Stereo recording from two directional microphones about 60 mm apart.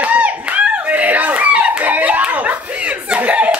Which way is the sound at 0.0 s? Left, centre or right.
Right.